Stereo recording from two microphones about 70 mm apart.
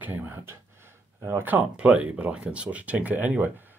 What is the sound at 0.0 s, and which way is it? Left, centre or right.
Speech, right.